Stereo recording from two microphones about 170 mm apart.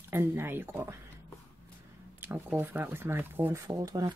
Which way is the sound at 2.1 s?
15° right (ahead or behind).